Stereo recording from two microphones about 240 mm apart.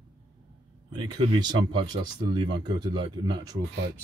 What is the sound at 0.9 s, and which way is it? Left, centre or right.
Speech, centre.